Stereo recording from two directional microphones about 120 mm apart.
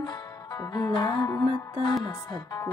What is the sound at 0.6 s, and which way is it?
Music, 35° left (ahead or behind).